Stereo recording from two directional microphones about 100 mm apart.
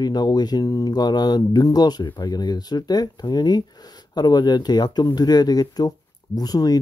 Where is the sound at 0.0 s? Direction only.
40° left (ahead or behind).